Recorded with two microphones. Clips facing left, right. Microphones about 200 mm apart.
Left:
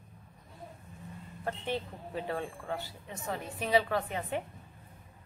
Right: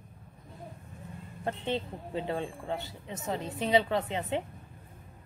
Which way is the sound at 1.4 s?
25° right (ahead or behind).